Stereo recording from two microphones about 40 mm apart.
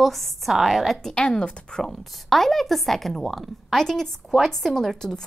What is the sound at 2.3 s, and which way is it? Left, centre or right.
A woman's voice, centre.